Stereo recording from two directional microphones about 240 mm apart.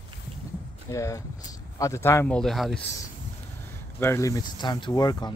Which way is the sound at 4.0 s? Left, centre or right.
Centre.